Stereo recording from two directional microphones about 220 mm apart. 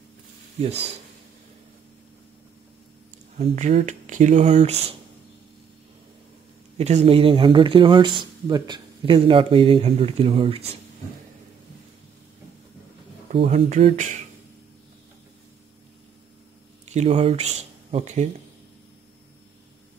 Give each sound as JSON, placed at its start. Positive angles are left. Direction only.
{"t": 0.6, "sound": "speech", "side_deg": -30}
{"t": 3.3, "sound": "speech", "side_deg": -30}
{"t": 6.8, "sound": "speech", "side_deg": -30}
{"t": 13.3, "sound": "speech", "side_deg": -30}
{"t": 16.8, "sound": "speech", "side_deg": -30}